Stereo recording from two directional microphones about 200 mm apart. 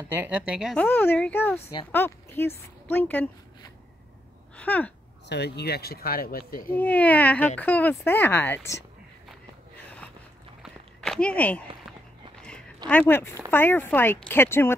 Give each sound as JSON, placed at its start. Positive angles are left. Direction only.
{"t": 0.1, "sound": "speech", "side_deg": -10}
{"t": 1.6, "sound": "speech", "side_deg": 25}
{"t": 1.9, "sound": "speech", "side_deg": 10}
{"t": 4.6, "sound": "speech", "side_deg": 5}
{"t": 5.3, "sound": "speech", "side_deg": 55}
{"t": 6.8, "sound": "speech", "side_deg": 5}
{"t": 10.6, "sound": "walk", "side_deg": 0}
{"t": 12.4, "sound": "a sound", "side_deg": 5}
{"t": 13.5, "sound": "speech", "side_deg": 10}